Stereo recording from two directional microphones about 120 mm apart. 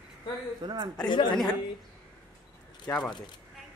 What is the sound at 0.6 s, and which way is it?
Speech, 40° right (ahead or behind).